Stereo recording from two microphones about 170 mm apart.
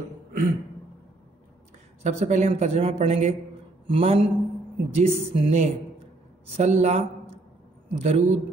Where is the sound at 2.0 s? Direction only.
45° right (ahead or behind).